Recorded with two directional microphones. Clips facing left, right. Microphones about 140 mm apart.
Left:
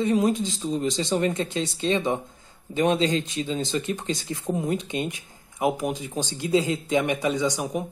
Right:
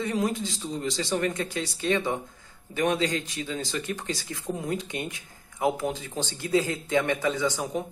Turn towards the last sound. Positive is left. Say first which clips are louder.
# left 2 dB
turn(degrees=10)  # may be behind; listen again after turning